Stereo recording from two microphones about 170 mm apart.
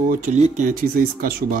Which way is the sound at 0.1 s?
50° right (ahead or behind).